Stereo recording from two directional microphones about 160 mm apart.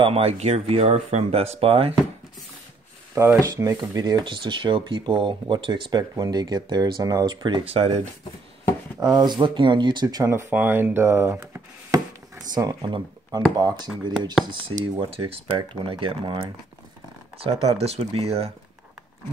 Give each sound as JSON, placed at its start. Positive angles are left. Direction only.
{"t": 0.0, "sound": "speech", "side_deg": -40}
{"t": 3.2, "sound": "speech", "side_deg": -20}
{"t": 9.0, "sound": "speech", "side_deg": -25}
{"t": 12.5, "sound": "speech", "side_deg": -25}
{"t": 17.7, "sound": "speech", "side_deg": -40}